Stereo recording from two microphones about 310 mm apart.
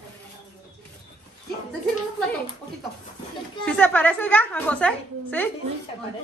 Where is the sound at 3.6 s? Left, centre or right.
Centre.